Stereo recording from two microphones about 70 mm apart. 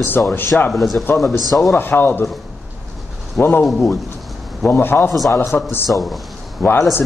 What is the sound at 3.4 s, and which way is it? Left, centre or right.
Speech, left.